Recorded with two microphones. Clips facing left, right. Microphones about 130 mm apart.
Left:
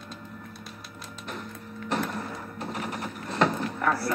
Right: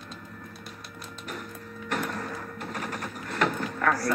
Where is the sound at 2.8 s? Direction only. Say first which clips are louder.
Left 1 dB; 15° left (ahead or behind).